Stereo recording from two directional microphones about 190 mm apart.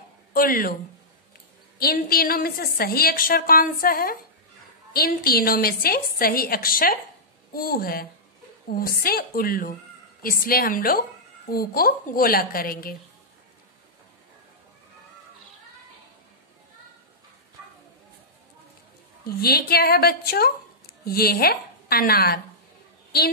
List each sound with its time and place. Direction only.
0.3 s a woman's voice: 50° left (ahead or behind)
1.8 s a woman's voice: 50° left (ahead or behind)
19.2 s a woman's voice: 55° left (ahead or behind)